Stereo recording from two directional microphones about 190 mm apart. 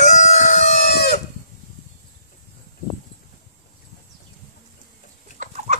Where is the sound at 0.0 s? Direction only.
35° left (ahead or behind).